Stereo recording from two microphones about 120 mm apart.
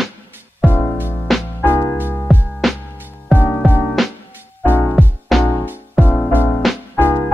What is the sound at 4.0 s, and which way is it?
Music, centre (ahead or behind).